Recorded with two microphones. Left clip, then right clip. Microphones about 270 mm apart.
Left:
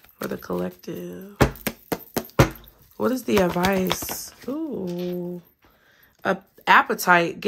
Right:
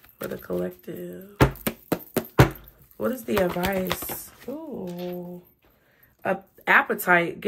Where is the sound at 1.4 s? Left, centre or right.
Centre.